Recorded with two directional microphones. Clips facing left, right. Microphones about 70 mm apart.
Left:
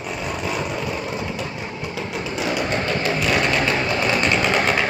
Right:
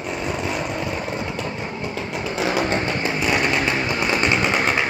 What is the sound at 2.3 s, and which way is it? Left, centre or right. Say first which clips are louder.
Music: right 2 dB; right.